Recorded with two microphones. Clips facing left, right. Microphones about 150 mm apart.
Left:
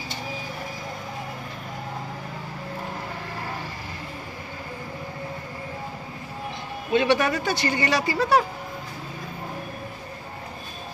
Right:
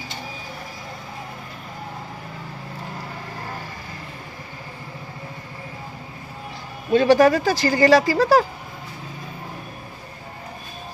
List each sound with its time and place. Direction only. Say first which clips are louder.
6.9 s speech: right 7 dB; 35° right (ahead or behind)